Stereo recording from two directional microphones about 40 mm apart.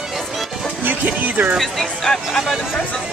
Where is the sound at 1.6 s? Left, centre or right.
Centre.